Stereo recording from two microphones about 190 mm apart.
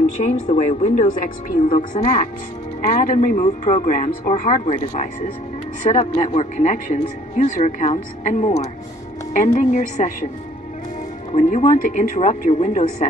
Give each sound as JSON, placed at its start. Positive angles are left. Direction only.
{"t": 0.2, "sound": "speech", "side_deg": 35}
{"t": 3.2, "sound": "speech", "side_deg": 45}
{"t": 11.3, "sound": "speech", "side_deg": 35}